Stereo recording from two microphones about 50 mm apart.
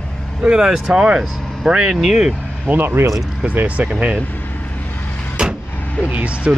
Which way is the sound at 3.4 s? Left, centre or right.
Right.